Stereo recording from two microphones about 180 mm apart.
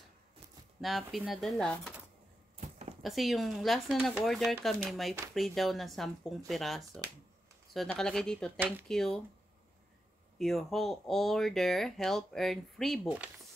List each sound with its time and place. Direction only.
0.7 s speech: centre (ahead or behind)
2.5 s a sound: 40° right (ahead or behind)
3.0 s speech: centre (ahead or behind)
10.4 s speech: centre (ahead or behind)